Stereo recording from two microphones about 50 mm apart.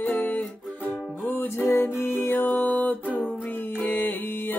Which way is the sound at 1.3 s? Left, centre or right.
Left.